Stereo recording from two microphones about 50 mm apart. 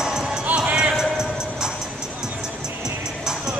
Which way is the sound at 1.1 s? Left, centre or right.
Centre.